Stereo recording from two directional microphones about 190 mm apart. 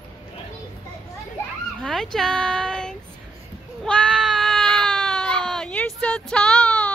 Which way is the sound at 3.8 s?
5° left (ahead or behind).